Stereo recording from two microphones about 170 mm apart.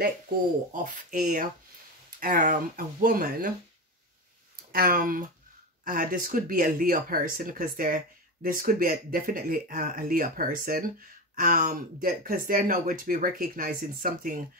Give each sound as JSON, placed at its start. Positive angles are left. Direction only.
{"t": 1.1, "sound": "speech", "side_deg": -50}
{"t": 4.7, "sound": "speech", "side_deg": -60}